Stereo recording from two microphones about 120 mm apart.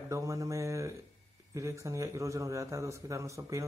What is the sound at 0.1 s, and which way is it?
A man's voice, 25° right (ahead or behind).